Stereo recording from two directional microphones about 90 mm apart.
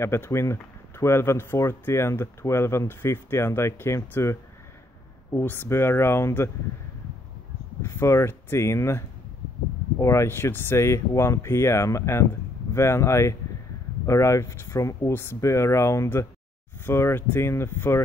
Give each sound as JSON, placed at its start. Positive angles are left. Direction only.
{"t": 0.0, "sound": "speech", "side_deg": 30}
{"t": 7.8, "sound": "speech", "side_deg": 30}